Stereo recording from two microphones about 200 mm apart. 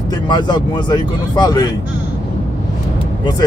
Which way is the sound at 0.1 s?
20° left (ahead or behind).